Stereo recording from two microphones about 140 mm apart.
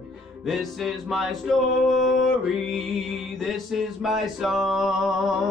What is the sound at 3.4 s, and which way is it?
Music, centre (ahead or behind).